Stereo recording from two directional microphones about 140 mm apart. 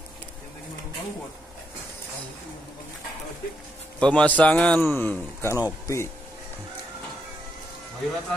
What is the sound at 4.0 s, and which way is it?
A man's voice, 10° left (ahead or behind).